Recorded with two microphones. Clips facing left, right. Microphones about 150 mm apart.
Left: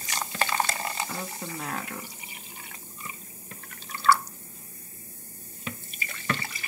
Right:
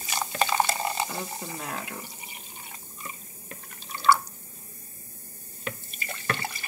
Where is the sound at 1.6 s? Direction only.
5° right (ahead or behind).